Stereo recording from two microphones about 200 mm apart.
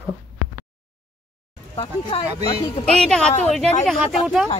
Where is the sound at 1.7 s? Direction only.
30° left (ahead or behind).